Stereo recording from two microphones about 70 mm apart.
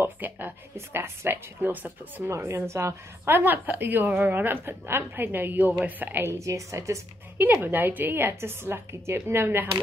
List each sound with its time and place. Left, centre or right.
0.0 s a woman's voice: right
2.3 s a woman's voice: right
6.3 s a woman's voice: right
7.5 s a woman's voice: right